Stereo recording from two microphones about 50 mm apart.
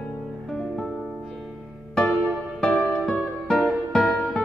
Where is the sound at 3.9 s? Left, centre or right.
Left.